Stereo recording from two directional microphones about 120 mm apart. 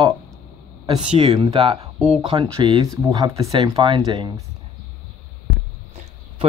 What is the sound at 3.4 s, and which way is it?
Speech, 50° right (ahead or behind).